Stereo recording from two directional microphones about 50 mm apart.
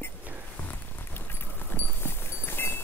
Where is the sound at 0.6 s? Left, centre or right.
Left.